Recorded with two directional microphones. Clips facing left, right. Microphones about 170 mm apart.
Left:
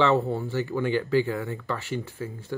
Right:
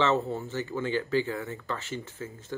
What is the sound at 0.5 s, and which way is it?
Speech, 20° right (ahead or behind).